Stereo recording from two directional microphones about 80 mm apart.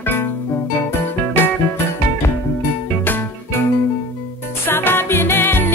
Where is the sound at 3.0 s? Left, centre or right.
Left.